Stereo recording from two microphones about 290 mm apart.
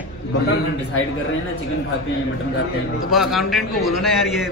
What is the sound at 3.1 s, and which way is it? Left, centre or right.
A man's voice, centre.